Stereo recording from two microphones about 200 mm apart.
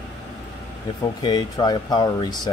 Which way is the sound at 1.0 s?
20° left (ahead or behind).